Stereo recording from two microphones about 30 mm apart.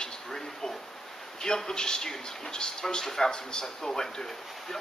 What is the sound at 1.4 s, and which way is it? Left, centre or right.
A man's voice, centre.